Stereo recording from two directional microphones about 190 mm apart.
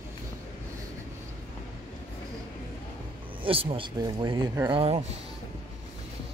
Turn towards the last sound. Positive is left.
turn(degrees=-25)  # may be behind; listen again after turning